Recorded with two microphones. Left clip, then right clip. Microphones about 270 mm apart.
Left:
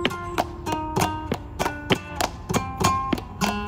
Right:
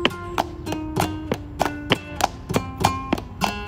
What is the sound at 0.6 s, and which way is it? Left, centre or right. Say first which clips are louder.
Music: left 1 dB; centre.